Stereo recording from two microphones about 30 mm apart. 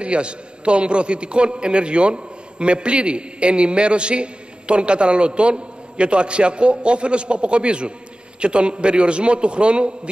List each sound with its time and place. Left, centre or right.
0.0 s a man's voice: right